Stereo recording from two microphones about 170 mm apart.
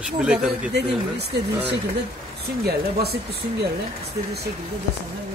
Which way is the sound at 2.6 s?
65° right (ahead or behind).